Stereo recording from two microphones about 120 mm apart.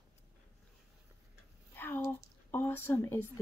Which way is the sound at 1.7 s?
15° left (ahead or behind).